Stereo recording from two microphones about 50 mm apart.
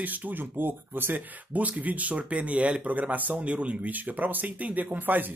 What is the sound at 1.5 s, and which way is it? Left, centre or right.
Speech, right.